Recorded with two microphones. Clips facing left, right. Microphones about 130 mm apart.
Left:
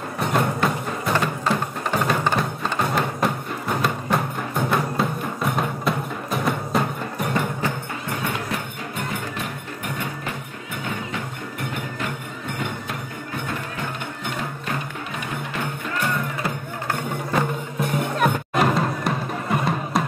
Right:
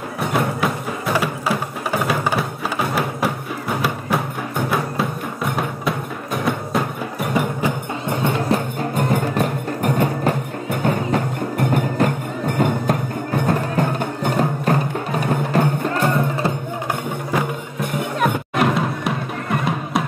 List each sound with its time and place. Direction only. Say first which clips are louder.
0.2 s music: right 1 dB; centre (ahead or behind)
8.1 s music: right 8 dB; 25° right (ahead or behind)
18.2 s music: right 2 dB; centre (ahead or behind)